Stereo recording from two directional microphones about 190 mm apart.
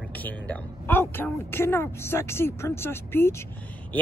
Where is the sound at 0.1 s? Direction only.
10° left (ahead or behind).